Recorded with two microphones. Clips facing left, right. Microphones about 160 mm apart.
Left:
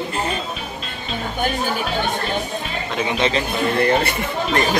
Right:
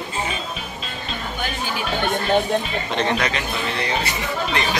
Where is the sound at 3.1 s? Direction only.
25° left (ahead or behind).